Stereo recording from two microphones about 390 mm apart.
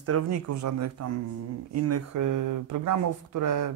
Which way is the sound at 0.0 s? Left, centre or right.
Right.